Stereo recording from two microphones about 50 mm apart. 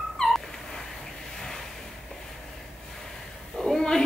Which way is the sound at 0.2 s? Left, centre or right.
Centre.